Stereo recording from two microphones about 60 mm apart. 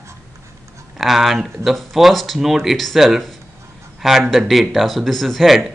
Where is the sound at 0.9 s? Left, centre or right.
Centre.